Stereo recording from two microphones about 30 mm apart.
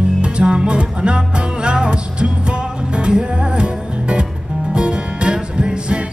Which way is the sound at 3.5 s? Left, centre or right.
Right.